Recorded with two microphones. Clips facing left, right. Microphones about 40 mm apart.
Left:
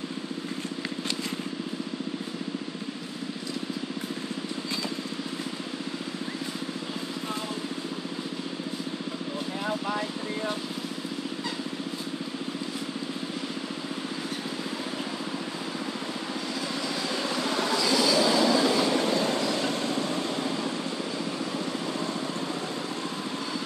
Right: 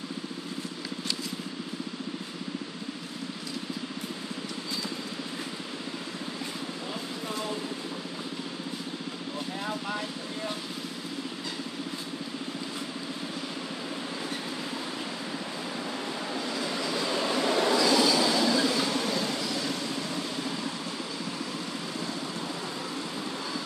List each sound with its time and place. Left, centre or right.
9.6 s vehicle: centre
16.3 s train: centre
18.9 s vehicle: left